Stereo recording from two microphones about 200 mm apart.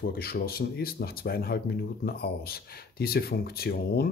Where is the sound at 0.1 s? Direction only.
50° left (ahead or behind).